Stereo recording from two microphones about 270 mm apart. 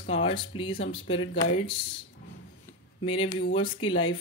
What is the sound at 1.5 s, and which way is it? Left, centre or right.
Speech, left.